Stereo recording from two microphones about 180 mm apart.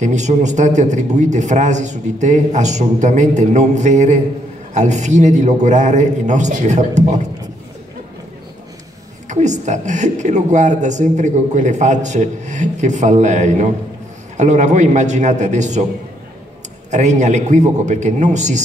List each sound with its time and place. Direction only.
0.0 s a woman's voice: 40° right (ahead or behind)
9.3 s a woman's voice: 40° right (ahead or behind)
16.9 s a woman's voice: 40° right (ahead or behind)